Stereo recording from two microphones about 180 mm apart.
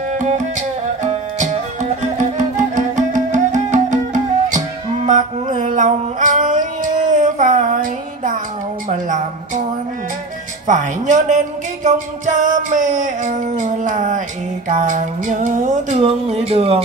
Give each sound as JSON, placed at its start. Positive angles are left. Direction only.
{"t": 0.2, "sound": "music", "side_deg": -45}
{"t": 5.0, "sound": "mantra", "side_deg": -45}
{"t": 8.8, "sound": "a sound", "side_deg": -45}
{"t": 10.7, "sound": "music", "side_deg": -45}